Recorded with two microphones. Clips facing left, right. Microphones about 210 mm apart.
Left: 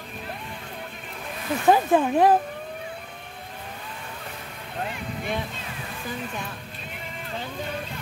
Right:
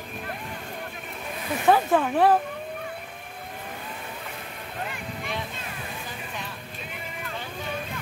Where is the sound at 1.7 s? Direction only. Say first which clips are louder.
Left 2 dB; 15° left (ahead or behind).